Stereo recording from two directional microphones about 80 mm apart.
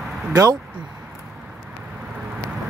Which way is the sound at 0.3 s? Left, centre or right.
Right.